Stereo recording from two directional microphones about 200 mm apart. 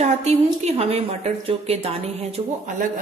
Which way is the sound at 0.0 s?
35° right (ahead or behind).